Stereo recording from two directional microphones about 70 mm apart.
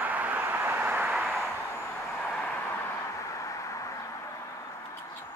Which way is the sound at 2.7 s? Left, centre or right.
Left.